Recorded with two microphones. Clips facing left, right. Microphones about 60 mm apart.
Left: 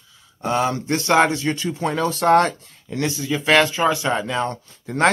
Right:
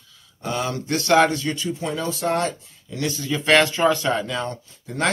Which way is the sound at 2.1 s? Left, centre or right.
Left.